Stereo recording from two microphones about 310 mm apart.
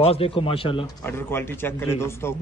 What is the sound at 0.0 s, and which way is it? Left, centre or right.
A man's voice, centre.